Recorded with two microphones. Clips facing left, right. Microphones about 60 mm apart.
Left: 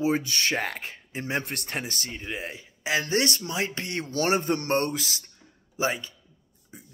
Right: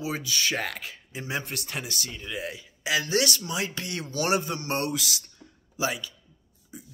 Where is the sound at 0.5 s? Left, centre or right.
Left.